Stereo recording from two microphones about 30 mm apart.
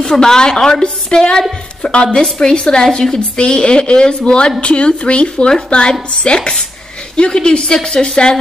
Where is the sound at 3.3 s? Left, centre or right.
Left.